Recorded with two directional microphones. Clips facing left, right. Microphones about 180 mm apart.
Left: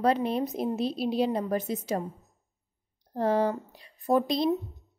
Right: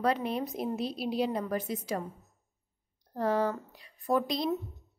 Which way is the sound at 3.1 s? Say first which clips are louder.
Left 3 dB; 25° left (ahead or behind).